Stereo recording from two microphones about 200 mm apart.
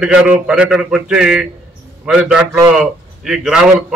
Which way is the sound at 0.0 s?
5° right (ahead or behind).